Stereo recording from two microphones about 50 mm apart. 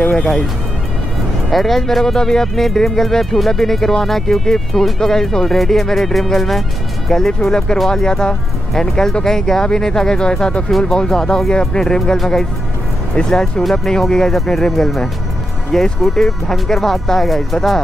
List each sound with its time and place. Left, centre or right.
1.5 s speech: centre